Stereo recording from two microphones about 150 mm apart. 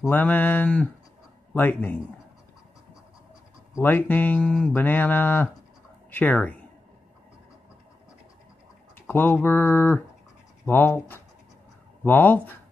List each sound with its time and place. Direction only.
0.0 s a man's voice: 10° left (ahead or behind)
3.7 s speech: 15° left (ahead or behind)
9.0 s speech: 15° left (ahead or behind)